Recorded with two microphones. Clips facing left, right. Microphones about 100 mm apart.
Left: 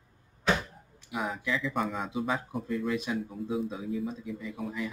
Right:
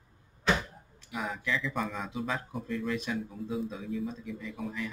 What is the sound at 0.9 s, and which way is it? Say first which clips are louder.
Speech: left 2 dB; 5° left (ahead or behind).